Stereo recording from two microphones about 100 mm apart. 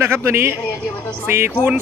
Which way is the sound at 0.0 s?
25° right (ahead or behind).